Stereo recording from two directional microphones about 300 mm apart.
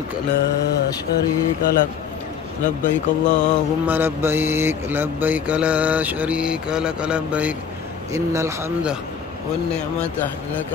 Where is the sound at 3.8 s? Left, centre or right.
Centre.